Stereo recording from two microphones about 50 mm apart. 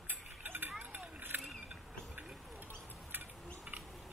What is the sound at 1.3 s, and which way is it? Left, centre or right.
Mechanisms, right.